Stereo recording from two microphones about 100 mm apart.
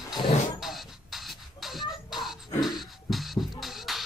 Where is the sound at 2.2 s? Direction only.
Centre (ahead or behind).